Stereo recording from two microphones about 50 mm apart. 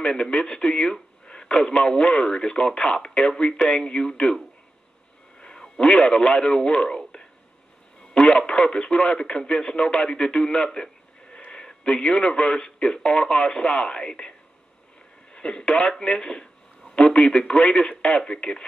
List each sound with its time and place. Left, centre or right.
0.0 s speech: centre
5.4 s a man's voice: centre
15.3 s a man's voice: centre